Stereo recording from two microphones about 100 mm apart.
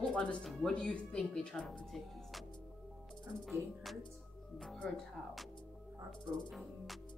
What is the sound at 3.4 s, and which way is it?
Speech, centre (ahead or behind).